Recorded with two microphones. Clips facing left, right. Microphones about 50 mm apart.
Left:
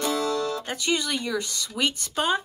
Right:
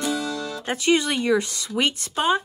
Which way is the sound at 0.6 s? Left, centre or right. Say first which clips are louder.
Right 6 dB; right.